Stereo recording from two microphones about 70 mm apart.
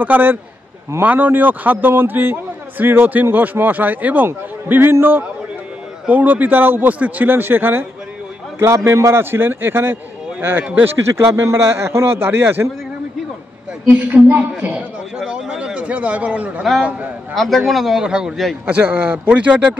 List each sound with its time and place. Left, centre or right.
0.0 s a man's voice: right
6.0 s a man's voice: right
13.8 s a man's voice: right
15.1 s a man's voice: centre
17.3 s a man's voice: centre
18.7 s a man's voice: right